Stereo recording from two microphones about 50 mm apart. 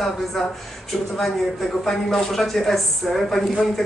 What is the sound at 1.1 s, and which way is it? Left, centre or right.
A woman's voice, centre.